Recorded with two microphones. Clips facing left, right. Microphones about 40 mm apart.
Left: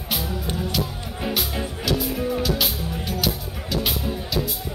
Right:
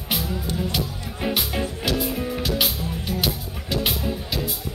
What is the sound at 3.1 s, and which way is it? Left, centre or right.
Music, right.